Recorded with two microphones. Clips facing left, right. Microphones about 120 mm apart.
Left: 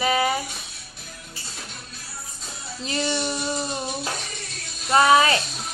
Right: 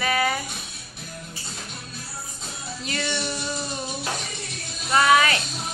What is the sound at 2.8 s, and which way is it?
Music, 30° left (ahead or behind).